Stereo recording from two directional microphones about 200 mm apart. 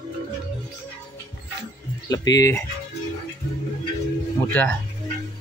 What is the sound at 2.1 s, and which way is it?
Speech, 15° left (ahead or behind).